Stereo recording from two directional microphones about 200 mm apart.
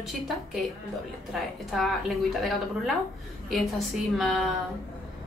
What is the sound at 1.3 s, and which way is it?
Speech, centre (ahead or behind).